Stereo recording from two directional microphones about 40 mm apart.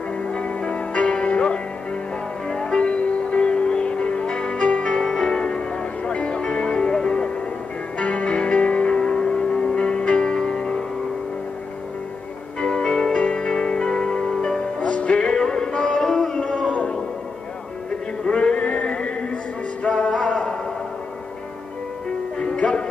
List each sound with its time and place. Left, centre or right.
0.2 s music: left
2.4 s music: centre
4.9 s music: centre
12.5 s music: centre
14.8 s music: left
16.0 s music: centre
16.3 s music: left
18.2 s music: left